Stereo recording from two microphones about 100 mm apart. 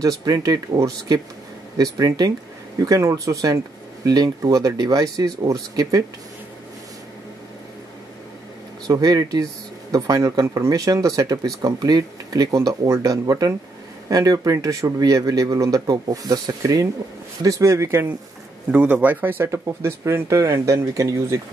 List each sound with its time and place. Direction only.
0.2 s speech: 40° right (ahead or behind)
8.8 s speech: 40° right (ahead or behind)
18.7 s speech: 15° right (ahead or behind); by 21.4 s 30° right (ahead or behind)